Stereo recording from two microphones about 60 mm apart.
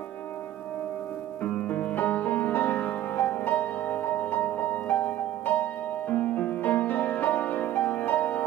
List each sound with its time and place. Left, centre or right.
1.4 s music: left